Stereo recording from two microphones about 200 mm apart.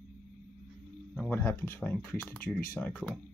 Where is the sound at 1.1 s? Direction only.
5° left (ahead or behind).